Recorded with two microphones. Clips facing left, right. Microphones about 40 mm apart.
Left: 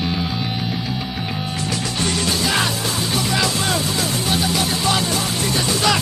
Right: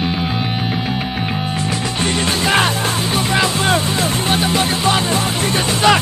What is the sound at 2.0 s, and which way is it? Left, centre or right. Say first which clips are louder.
Music: right 3 dB; right.